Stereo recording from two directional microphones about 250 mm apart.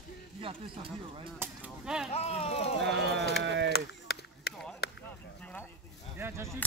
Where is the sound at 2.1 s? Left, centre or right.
Left.